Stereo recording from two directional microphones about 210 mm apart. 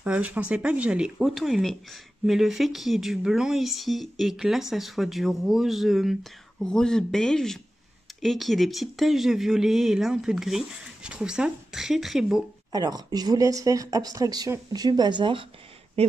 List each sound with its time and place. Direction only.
0.0 s speech: 5° right (ahead or behind)
12.7 s speech: 20° right (ahead or behind)